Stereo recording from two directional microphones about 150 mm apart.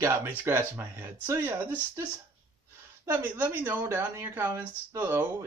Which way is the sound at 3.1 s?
15° right (ahead or behind).